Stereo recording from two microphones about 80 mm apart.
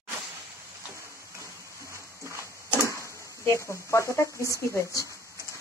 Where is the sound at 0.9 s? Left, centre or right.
Right.